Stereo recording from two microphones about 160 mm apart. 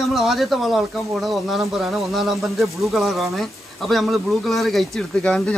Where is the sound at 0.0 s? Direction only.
Centre (ahead or behind).